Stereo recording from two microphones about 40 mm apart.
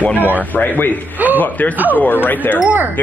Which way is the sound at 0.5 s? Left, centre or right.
Left.